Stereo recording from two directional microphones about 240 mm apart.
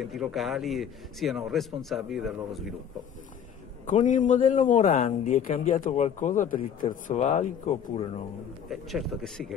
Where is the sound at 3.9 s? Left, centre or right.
Left.